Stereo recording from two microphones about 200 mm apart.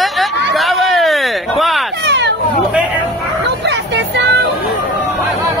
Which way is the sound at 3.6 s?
60° right (ahead or behind).